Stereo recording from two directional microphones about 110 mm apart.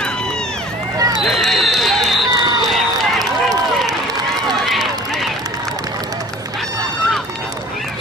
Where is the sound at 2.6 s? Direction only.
Centre (ahead or behind).